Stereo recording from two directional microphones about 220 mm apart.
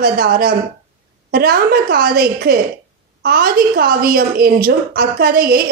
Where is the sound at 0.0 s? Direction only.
40° right (ahead or behind).